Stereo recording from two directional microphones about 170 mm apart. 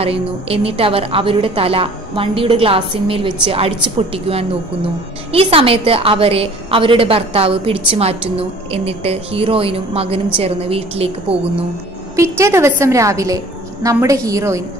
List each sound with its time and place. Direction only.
0.0 s a woman's voice: 35° right (ahead or behind)
12.2 s a woman's voice: 15° right (ahead or behind)